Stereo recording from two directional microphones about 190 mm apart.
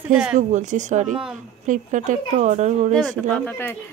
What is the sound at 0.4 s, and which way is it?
A woman's voice, 40° right (ahead or behind).